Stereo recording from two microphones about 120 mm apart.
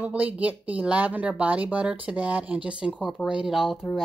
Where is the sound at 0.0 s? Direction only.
10° right (ahead or behind).